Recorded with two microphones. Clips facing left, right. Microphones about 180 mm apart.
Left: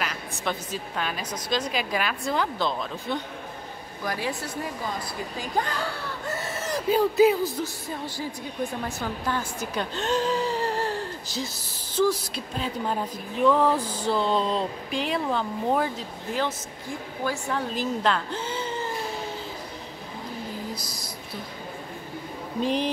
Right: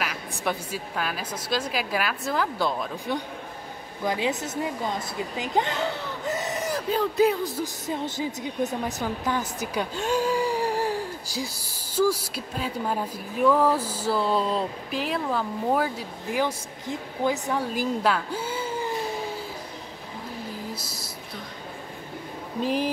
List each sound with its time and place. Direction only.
0.0 s a woman's voice: 10° right (ahead or behind)
6.9 s a woman's voice: 5° left (ahead or behind)
7.6 s a woman's voice: 20° right (ahead or behind)
22.6 s a woman's voice: 5° right (ahead or behind)